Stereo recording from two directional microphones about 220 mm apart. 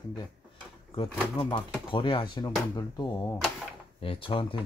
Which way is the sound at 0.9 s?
20° left (ahead or behind).